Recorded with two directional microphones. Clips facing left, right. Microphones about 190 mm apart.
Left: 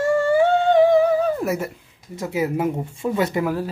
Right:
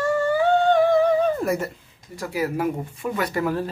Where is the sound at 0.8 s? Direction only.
10° left (ahead or behind).